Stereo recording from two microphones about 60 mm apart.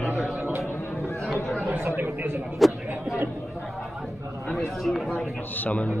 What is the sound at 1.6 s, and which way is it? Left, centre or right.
Speech, right.